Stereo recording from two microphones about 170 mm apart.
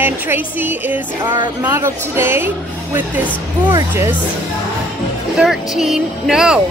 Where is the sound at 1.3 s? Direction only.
25° right (ahead or behind).